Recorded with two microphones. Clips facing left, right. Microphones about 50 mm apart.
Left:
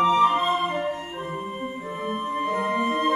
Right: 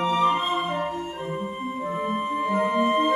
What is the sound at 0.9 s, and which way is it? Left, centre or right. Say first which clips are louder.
Music: right 1 dB; left.